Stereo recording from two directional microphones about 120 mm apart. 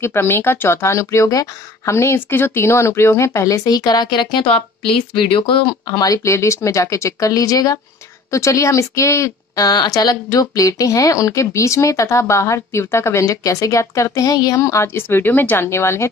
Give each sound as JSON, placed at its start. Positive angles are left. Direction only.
{"t": 0.0, "sound": "speech", "side_deg": 20}